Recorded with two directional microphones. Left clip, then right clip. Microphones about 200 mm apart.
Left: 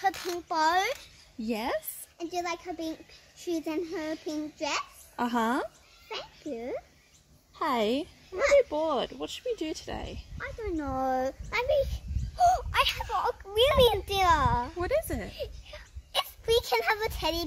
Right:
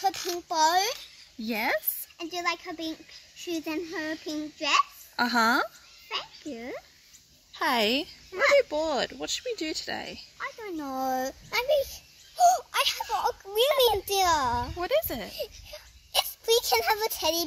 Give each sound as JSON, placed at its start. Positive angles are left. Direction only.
{"t": 0.0, "sound": "a child's voice", "side_deg": -45}
{"t": 1.5, "sound": "speech", "side_deg": -10}
{"t": 2.3, "sound": "a child's voice", "side_deg": -45}
{"t": 5.1, "sound": "speech", "side_deg": -10}
{"t": 6.0, "sound": "a child's voice", "side_deg": -50}
{"t": 7.5, "sound": "speech", "side_deg": -15}
{"t": 10.3, "sound": "a child's voice", "side_deg": -55}
{"t": 14.8, "sound": "speech", "side_deg": -5}
{"t": 15.3, "sound": "a child's voice", "side_deg": -50}